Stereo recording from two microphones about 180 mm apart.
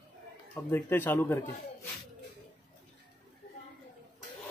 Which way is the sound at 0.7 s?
10° left (ahead or behind).